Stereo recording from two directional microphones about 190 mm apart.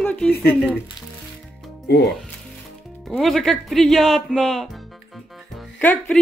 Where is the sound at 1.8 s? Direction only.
60° left (ahead or behind).